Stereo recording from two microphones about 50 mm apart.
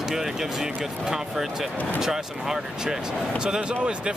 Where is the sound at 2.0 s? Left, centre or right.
Centre.